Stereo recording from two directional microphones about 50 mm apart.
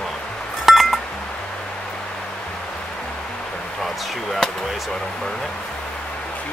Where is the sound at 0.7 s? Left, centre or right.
Centre.